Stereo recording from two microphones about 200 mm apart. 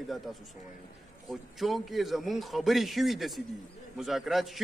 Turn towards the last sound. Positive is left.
turn(degrees=0)  # may be behind; listen again after turning